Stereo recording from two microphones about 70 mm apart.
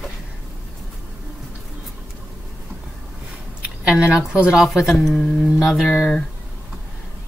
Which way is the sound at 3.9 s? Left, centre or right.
Centre.